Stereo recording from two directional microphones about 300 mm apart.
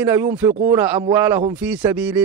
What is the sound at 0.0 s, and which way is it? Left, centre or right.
Speech, centre.